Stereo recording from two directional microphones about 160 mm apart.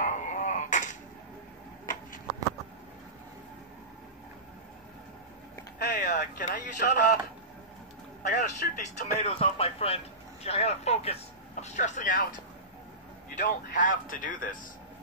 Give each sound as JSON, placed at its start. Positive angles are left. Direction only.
{"t": 0.0, "sound": "a sound", "side_deg": 50}
{"t": 5.9, "sound": "speech", "side_deg": 50}
{"t": 8.2, "sound": "speech", "side_deg": 50}
{"t": 9.2, "sound": "speech", "side_deg": 35}
{"t": 13.4, "sound": "speech", "side_deg": 55}